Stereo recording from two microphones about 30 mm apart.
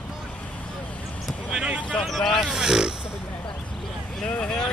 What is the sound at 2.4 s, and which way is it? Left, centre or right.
Pig, right.